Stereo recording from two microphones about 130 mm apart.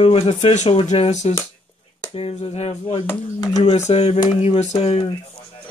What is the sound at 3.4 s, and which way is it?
Speech, 30° left (ahead or behind).